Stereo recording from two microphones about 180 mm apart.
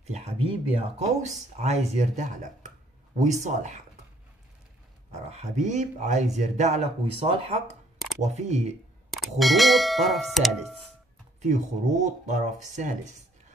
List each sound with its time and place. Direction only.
0.0 s speech: 35° right (ahead or behind)
5.3 s speech: 40° right (ahead or behind)
9.4 s speech: centre (ahead or behind)
11.4 s speech: 45° right (ahead or behind)